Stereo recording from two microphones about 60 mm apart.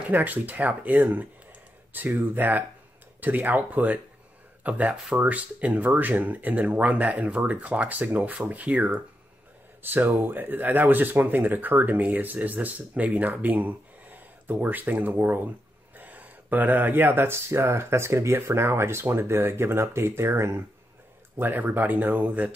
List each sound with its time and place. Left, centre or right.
0.0 s speech: right
9.8 s speech: right
21.4 s speech: right